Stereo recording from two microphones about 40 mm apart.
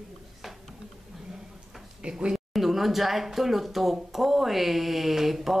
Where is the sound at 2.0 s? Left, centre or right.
Right.